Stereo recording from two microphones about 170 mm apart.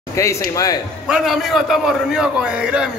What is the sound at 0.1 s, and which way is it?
Speech, 15° left (ahead or behind).